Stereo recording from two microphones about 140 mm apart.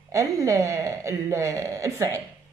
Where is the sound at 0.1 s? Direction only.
20° right (ahead or behind).